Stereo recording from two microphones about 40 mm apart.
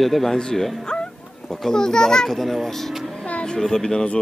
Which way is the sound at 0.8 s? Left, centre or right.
Centre.